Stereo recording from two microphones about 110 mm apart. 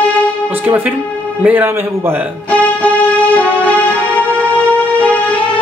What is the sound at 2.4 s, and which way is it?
Music, 10° left (ahead or behind).